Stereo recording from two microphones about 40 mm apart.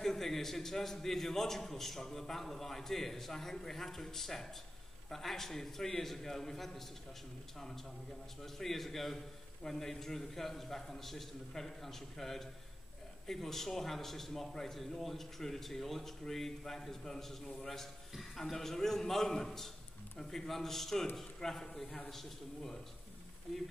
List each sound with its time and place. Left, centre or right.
0.0 s a man's voice: centre